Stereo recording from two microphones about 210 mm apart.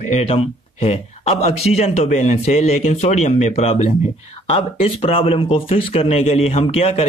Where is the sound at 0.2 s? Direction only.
30° left (ahead or behind).